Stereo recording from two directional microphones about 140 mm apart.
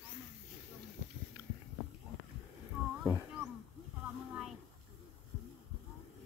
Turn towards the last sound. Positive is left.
turn(degrees=0)  # may be behind; listen again after turning